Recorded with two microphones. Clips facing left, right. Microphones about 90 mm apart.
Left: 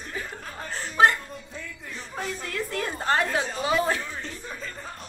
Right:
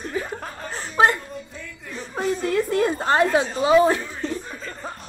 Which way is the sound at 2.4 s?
20° right (ahead or behind).